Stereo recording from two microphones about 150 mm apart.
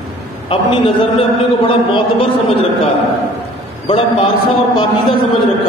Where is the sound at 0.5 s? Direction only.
35° left (ahead or behind).